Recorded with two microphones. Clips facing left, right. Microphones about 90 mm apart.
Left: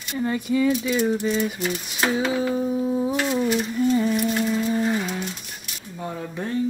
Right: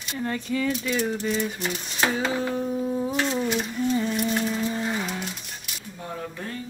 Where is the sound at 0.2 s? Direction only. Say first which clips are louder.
Left 5 dB; 10° left (ahead or behind).